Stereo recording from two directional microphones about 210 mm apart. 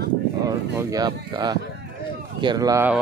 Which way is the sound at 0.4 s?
15° right (ahead or behind).